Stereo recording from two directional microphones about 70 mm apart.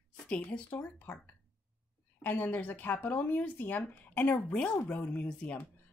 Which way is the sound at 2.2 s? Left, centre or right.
Left.